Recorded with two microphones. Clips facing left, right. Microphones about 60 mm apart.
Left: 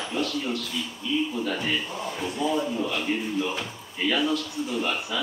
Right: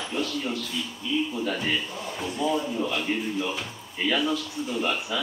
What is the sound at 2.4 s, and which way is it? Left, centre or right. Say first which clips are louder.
Speech: even; centre.